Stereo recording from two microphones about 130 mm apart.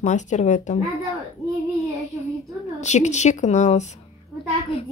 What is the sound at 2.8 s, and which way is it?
A woman's voice, 65° left (ahead or behind).